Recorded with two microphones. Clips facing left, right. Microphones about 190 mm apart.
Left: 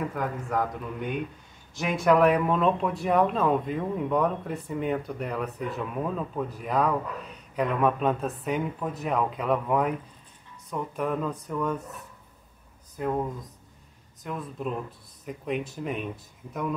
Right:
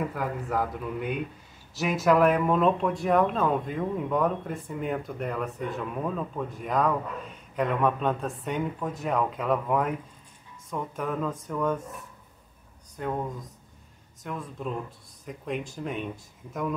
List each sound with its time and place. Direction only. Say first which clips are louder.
0.1 s speech: even; 5° right (ahead or behind)
12.9 s speech: left 3 dB; 5° left (ahead or behind)
14.2 s speech: left 1 dB; centre (ahead or behind)